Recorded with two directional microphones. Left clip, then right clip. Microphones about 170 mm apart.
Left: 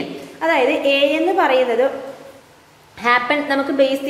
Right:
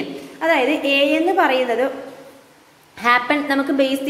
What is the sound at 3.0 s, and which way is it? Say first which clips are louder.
Speech: even; 15° right (ahead or behind).